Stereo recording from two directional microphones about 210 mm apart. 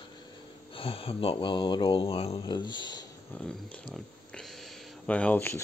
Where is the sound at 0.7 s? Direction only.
25° left (ahead or behind).